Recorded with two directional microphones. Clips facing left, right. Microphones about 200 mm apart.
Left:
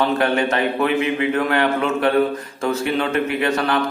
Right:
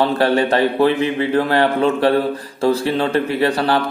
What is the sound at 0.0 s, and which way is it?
A man's voice, 30° right (ahead or behind).